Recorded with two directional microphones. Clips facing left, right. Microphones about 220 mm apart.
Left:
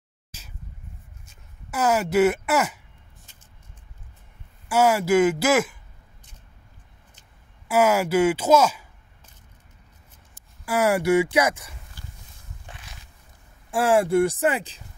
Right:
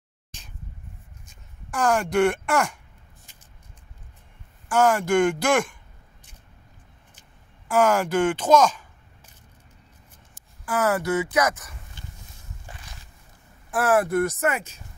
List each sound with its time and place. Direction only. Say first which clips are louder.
0.3 s a sound: even; 5° left (ahead or behind)
1.7 s speech: left 1 dB; 5° left (ahead or behind)
4.6 s speech: left 1 dB; 5° left (ahead or behind)
7.6 s speech: left 1 dB; 10° left (ahead or behind)
10.6 s speech: left 2 dB; 10° left (ahead or behind)
11.1 s speech: left 3 dB; 30° left (ahead or behind)
11.4 s speech: left 1 dB; 10° left (ahead or behind)
13.7 s speech: left 1 dB; 30° left (ahead or behind)